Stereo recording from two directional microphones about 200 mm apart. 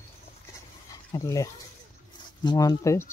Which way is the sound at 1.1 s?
15° left (ahead or behind).